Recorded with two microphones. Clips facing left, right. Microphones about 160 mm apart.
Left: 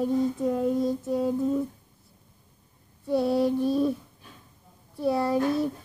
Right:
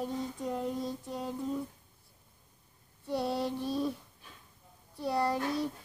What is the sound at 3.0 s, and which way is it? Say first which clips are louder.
Speech: left 9 dB; centre (ahead or behind).